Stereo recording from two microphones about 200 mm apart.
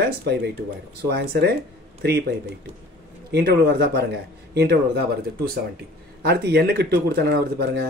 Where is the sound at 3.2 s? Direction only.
55° right (ahead or behind).